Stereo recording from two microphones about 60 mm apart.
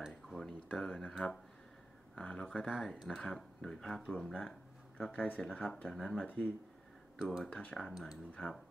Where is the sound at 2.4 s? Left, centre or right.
Centre.